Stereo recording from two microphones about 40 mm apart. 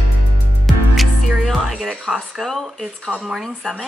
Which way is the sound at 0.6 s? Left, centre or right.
Centre.